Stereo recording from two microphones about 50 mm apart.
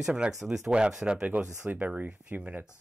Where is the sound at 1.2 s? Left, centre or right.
Right.